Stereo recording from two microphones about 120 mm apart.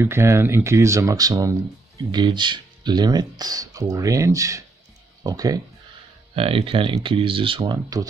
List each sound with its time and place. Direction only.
0.0 s speech: 20° right (ahead or behind)
6.3 s speech: 50° right (ahead or behind)
7.7 s speech: 30° right (ahead or behind)